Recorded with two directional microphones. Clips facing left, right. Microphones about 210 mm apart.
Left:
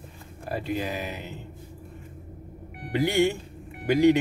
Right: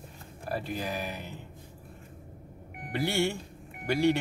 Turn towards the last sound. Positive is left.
turn(degrees=15)  # may be behind; listen again after turning